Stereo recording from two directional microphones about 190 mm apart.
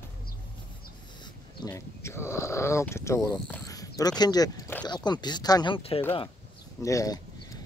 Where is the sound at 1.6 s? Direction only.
15° left (ahead or behind).